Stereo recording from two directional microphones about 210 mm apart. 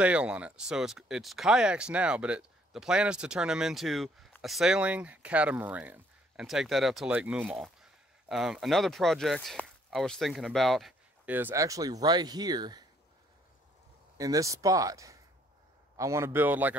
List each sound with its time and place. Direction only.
0.0 s speech: 5° right (ahead or behind)
14.1 s speech: 15° right (ahead or behind)